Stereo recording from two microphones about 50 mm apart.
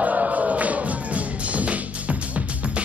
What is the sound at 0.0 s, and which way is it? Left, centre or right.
Music, right.